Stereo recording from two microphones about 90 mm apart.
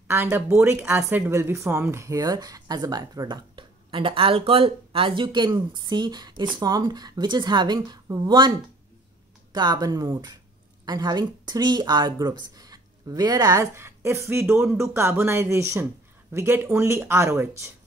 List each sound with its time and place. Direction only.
0.1 s speech: 25° right (ahead or behind); by 3.3 s 45° right (ahead or behind)
3.3 s speech: 70° right (ahead or behind); by 9.8 s 55° right (ahead or behind)
9.8 s speech: 40° right (ahead or behind)